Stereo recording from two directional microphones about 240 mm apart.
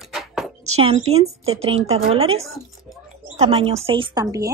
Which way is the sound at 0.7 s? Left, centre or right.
Right.